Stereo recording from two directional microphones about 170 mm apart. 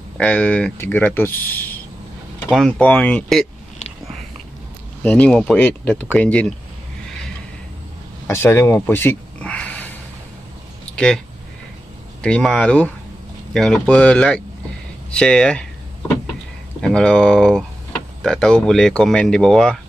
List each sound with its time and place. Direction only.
0.2 s speech: 10° left (ahead or behind)
5.0 s speech: 10° left (ahead or behind)
8.3 s a sound: 15° left (ahead or behind)
12.2 s speech: 5° left (ahead or behind)
16.8 s speech: 5° left (ahead or behind)